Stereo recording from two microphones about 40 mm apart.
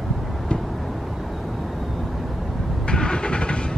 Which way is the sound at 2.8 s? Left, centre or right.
Left.